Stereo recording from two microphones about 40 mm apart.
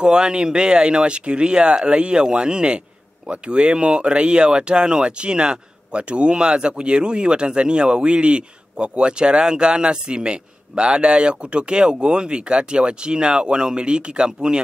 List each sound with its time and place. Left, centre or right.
0.0 s speech: right